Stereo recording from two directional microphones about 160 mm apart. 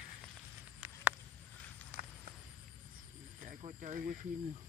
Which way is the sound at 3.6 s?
50° right (ahead or behind).